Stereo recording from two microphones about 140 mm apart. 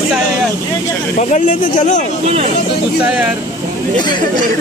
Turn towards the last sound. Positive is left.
turn(degrees=-10)  # may be behind; listen again after turning